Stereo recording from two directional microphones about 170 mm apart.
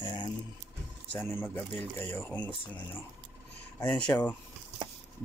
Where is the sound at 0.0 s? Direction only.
25° left (ahead or behind).